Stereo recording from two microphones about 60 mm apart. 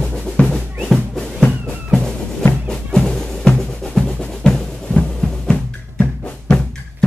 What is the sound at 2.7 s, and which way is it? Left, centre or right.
Drum, centre.